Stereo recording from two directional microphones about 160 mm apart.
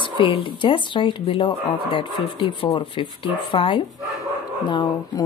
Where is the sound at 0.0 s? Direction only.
30° left (ahead or behind).